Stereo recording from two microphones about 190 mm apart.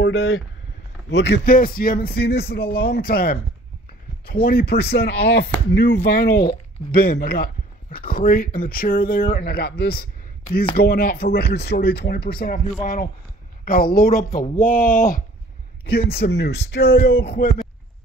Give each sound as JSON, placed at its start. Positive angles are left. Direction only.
{"t": 0.0, "sound": "speech", "side_deg": 70}